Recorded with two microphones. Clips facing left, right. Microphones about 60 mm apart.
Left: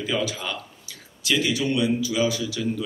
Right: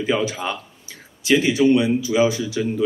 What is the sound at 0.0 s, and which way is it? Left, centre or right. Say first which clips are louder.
Speech: right 5 dB; right.